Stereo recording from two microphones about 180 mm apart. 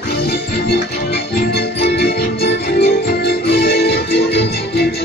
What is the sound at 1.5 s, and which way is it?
Music, 65° left (ahead or behind).